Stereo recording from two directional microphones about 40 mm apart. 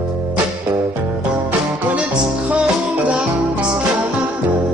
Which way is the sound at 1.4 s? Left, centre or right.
Right.